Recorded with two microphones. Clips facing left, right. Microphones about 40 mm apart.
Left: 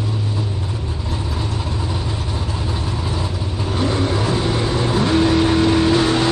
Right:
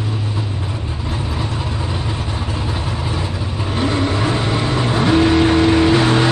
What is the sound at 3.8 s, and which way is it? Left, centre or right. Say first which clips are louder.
Vehicle: right 2 dB; right.